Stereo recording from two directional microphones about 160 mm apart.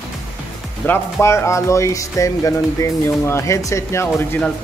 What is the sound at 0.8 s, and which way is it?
Speech, 15° left (ahead or behind).